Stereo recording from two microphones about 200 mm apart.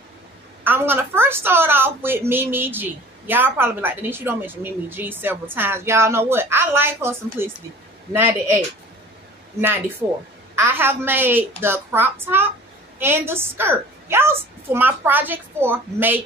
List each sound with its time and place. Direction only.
0.7 s a woman's voice: 10° right (ahead or behind)
10.0 s a woman's voice: 20° right (ahead or behind)